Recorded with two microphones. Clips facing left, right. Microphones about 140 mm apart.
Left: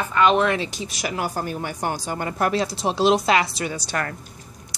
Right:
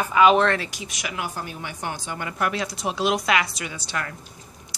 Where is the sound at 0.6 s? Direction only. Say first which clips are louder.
Left 5 dB; 30° left (ahead or behind).